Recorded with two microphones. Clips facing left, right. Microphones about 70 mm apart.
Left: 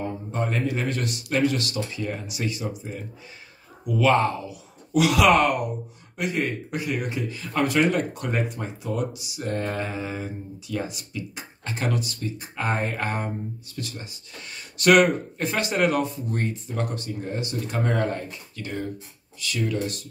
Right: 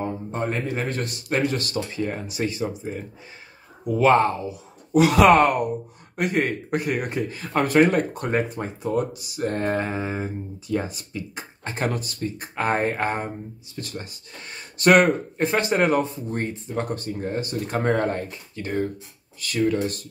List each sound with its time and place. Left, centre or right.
0.0 s a man's voice: right